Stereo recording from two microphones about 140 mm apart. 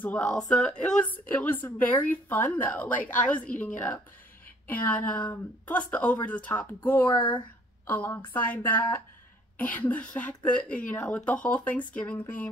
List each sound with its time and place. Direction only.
0.0 s a woman's voice: 10° left (ahead or behind)
7.2 s speech: 35° left (ahead or behind)
7.8 s a woman's voice: 15° left (ahead or behind)